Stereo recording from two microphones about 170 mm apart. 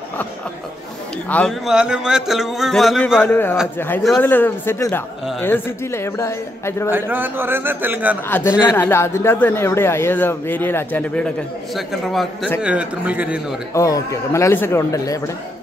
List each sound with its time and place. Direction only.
1.3 s a man's voice: 5° left (ahead or behind)
1.7 s speech: 5° right (ahead or behind)
3.3 s a man's voice: 10° left (ahead or behind)
6.9 s a man's voice: 10° right (ahead or behind)
8.3 s a man's voice: 10° left (ahead or behind); by 13.6 s 5° right (ahead or behind)
13.7 s a man's voice: 20° left (ahead or behind)